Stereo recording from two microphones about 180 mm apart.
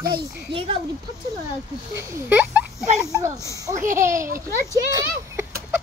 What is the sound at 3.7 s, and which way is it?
Speech, 45° right (ahead or behind).